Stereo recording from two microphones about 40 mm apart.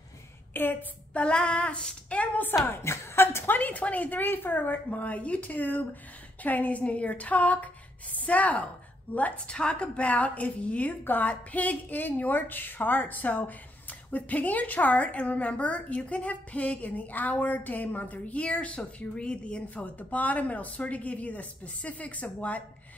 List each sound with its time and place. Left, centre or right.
0.5 s a sound: left
1.1 s child singing: left
2.0 s a sound: left
2.7 s speech: left
3.5 s a woman's voice: left
9.5 s a woman's voice: left
18.9 s child singing: left
19.7 s a woman's voice: left